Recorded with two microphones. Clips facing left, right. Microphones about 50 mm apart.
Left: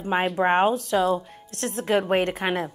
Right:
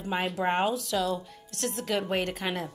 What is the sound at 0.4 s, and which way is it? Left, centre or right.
A woman's voice, left.